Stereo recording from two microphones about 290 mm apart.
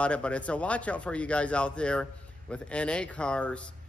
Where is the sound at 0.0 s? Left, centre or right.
Centre.